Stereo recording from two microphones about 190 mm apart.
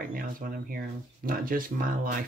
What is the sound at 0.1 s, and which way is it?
Speech, 50° right (ahead or behind).